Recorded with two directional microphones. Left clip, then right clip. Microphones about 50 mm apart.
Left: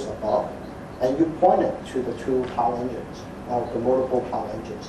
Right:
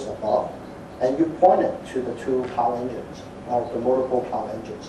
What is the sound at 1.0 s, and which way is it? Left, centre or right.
Speech, centre.